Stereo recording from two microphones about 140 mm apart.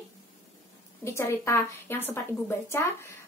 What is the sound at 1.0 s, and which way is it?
A woman's voice, 20° left (ahead or behind).